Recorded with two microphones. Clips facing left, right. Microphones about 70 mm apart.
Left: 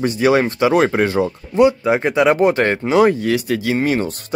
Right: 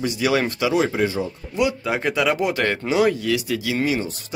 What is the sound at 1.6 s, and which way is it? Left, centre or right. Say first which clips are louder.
Speech: left 8 dB; left.